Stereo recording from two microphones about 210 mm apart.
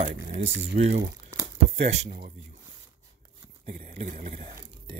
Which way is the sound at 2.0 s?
45° right (ahead or behind).